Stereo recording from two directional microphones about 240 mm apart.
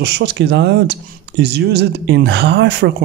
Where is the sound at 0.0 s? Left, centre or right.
Right.